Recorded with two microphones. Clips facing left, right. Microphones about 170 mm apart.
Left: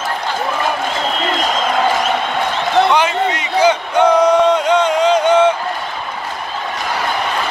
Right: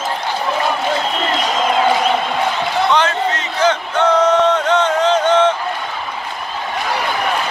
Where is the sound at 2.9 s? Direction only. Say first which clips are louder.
Left 1 dB; 10° left (ahead or behind).